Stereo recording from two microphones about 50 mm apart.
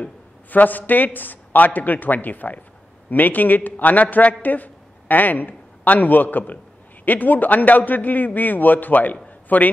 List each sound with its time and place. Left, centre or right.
0.5 s a man's voice: left